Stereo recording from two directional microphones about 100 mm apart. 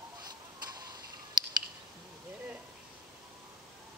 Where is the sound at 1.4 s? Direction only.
50° right (ahead or behind).